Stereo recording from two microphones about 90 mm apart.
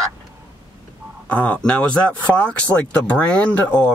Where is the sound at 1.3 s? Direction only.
15° left (ahead or behind).